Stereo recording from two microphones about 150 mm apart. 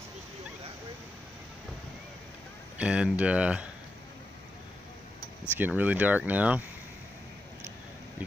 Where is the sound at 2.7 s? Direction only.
5° right (ahead or behind).